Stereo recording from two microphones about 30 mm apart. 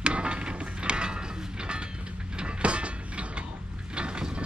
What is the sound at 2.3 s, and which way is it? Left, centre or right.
Mechanisms, right.